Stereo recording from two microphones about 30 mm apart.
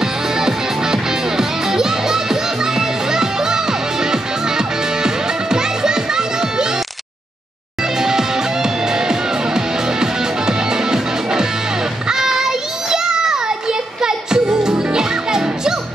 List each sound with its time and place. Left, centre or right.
0.0 s music: centre
8.0 s music: centre
12.1 s child singing: centre